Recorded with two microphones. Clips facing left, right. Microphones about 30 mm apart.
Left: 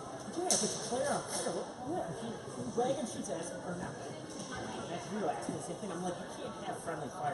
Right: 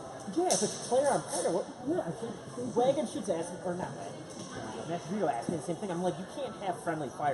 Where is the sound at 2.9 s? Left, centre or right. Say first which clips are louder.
Right 6 dB; centre.